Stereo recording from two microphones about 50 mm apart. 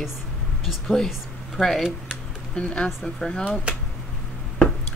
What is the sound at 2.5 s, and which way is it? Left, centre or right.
Speech, left.